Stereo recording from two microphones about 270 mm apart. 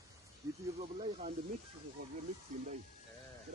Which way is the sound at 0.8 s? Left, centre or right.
Right.